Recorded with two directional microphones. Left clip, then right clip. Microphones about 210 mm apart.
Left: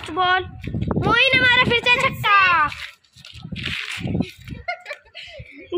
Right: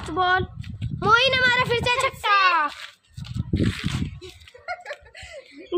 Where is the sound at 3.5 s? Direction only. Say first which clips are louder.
Left 1 dB; 10° right (ahead or behind).